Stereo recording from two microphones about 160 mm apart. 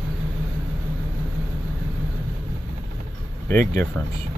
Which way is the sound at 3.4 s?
15° left (ahead or behind).